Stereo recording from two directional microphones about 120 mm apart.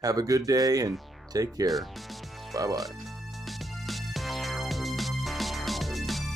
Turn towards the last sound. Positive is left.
turn(degrees=0)  # may be behind; listen again after turning